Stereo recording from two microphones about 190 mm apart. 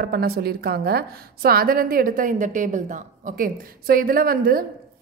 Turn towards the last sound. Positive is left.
turn(degrees=-50)  # may be behind; listen again after turning